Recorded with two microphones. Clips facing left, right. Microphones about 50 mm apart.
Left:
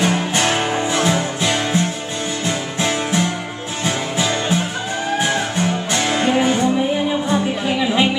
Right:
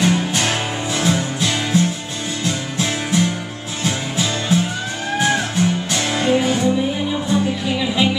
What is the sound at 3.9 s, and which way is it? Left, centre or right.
Music, centre.